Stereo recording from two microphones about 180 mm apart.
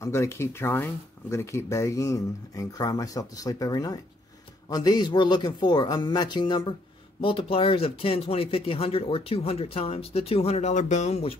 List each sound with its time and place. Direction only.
0.0 s speech: 15° left (ahead or behind); by 11.3 s 35° left (ahead or behind)